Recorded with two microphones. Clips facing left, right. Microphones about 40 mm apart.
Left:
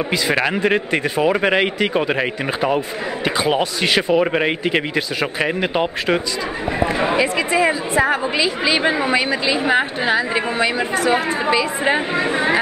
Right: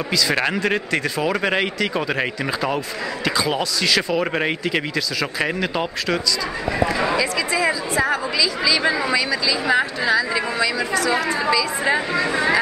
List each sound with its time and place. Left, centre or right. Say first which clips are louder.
0.6 s speech: left 3 dB; left
3.3 s a woman's voice: left 3 dB; left
4.2 s speech: left 4 dB; centre
4.6 s a woman's voice: left 3 dB; left